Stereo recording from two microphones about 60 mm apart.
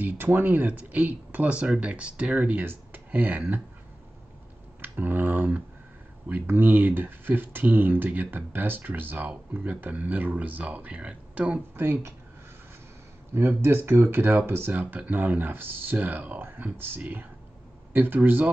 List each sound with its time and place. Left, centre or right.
0.0 s speech: right
2.6 s speech: right
4.8 s speech: right
11.7 s speech: right
13.3 s speech: right